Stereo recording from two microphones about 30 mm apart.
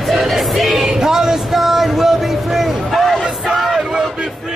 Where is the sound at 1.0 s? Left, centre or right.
Centre.